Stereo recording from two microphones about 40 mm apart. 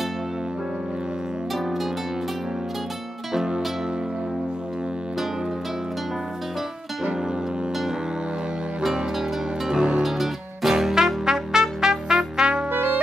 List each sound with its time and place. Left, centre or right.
3.3 s music: centre
9.7 s music: centre
10.0 s trumpet: centre
12.7 s music: right